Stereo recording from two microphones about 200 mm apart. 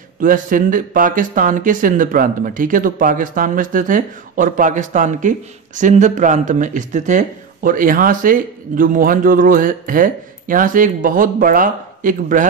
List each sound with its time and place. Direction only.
0.2 s speech: 45° right (ahead or behind)